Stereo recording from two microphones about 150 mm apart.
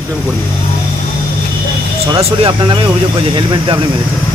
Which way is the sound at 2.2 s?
35° right (ahead or behind).